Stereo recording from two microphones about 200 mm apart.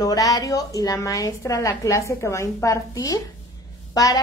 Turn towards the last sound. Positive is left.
turn(degrees=15)  # may be behind; listen again after turning